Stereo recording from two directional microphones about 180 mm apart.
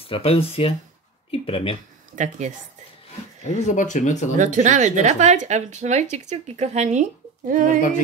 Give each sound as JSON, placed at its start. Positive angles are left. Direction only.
{"t": 0.0, "sound": "speech", "side_deg": 30}
{"t": 2.1, "sound": "speech", "side_deg": -45}
{"t": 3.4, "sound": "speech", "side_deg": 40}
{"t": 4.4, "sound": "speech", "side_deg": -45}